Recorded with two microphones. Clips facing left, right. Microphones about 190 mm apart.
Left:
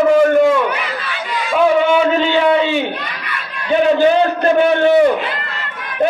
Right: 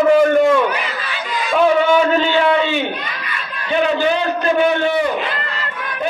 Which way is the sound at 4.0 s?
45° left (ahead or behind).